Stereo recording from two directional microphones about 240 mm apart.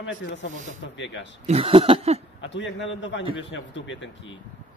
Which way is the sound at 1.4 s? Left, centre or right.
Right.